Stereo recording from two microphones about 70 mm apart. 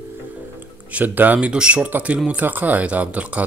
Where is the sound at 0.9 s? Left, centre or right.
Right.